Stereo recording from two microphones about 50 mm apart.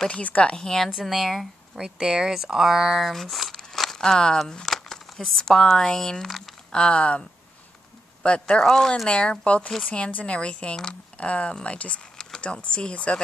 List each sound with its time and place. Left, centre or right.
0.1 s speech: left
0.6 s speech: centre
0.9 s speech: centre
1.8 s speech: centre
3.5 s a sound: centre
4.5 s speech: centre
6.7 s speech: centre
8.6 s speech: centre
9.1 s speech: centre